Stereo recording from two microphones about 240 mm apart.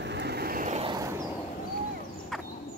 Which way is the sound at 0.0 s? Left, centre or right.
Right.